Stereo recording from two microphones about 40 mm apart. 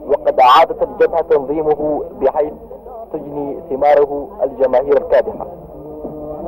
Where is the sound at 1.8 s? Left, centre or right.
Left.